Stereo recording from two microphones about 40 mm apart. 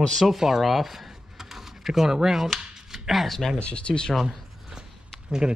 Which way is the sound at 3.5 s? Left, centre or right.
Left.